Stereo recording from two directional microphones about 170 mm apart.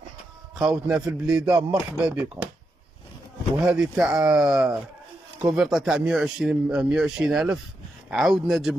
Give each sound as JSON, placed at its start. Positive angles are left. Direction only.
{"t": 0.6, "sound": "speech", "side_deg": -5}
{"t": 3.6, "sound": "speech", "side_deg": -5}